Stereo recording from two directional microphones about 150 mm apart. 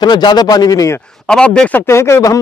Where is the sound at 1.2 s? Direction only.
5° left (ahead or behind); by 2.4 s 20° left (ahead or behind).